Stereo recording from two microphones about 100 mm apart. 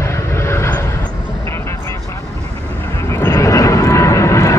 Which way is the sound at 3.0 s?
25° left (ahead or behind).